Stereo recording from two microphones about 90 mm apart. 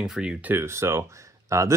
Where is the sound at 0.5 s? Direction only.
30° right (ahead or behind).